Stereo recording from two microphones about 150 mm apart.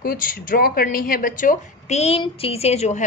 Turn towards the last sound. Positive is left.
turn(degrees=45)  # may be behind; listen again after turning